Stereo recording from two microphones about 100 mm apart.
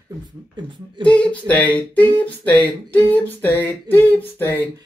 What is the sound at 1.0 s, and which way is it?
Speech, 10° left (ahead or behind).